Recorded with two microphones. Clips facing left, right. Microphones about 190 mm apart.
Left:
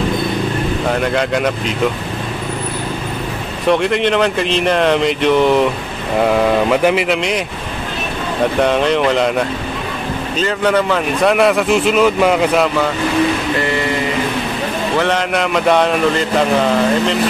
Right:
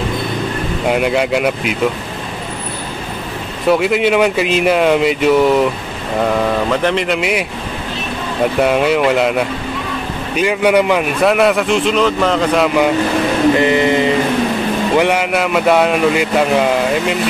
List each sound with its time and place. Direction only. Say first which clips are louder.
0.8 s speech: right 4 dB; 10° right (ahead or behind)
3.6 s speech: right 1 dB; 5° right (ahead or behind)
6.2 s speech: left 2 dB; 10° left (ahead or behind)
7.2 s a man's voice: right 1 dB; 5° right (ahead or behind)
8.5 s speech: right 1 dB; 5° right (ahead or behind)
11.2 s a man's voice: even; centre (ahead or behind)
13.6 s vehicle: right 5 dB; 20° right (ahead or behind)
15.0 s speech: right 1 dB; 10° right (ahead or behind)